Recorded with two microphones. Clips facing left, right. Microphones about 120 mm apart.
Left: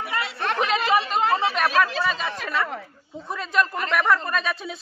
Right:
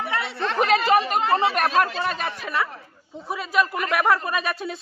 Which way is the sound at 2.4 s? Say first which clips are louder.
Even; 5° right (ahead or behind).